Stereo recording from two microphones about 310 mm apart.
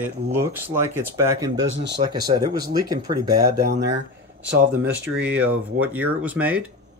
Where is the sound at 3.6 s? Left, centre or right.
Right.